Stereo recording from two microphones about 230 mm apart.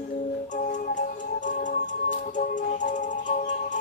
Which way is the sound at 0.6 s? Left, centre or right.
Left.